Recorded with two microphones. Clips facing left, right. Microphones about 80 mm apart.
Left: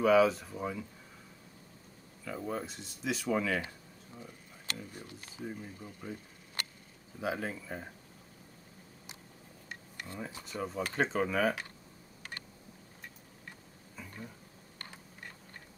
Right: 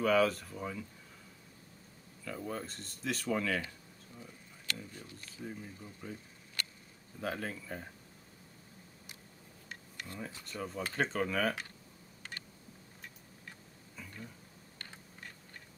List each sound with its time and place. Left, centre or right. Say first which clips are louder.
0.0 s speech: left 4 dB; centre
2.2 s speech: left 3 dB; centre
4.2 s speech: left 2 dB; left
7.2 s speech: left 3 dB; centre
9.9 s a sound: left 2 dB; left
10.4 s speech: left 4 dB; centre